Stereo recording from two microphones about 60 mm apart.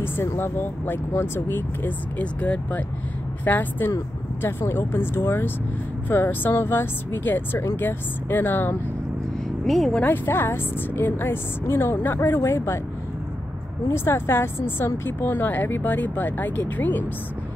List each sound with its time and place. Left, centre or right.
0.0 s speech: left
2.1 s speech: left
4.4 s speech: left
9.7 s speech: centre
10.0 s speech: left
13.8 s speech: left